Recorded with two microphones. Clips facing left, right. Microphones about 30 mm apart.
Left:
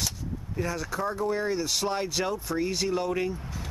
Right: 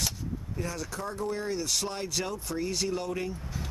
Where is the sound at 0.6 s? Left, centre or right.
Centre.